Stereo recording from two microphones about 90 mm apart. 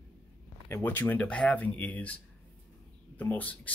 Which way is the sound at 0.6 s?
25° left (ahead or behind).